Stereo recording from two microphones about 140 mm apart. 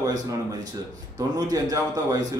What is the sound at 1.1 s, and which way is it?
A man's voice, 25° right (ahead or behind).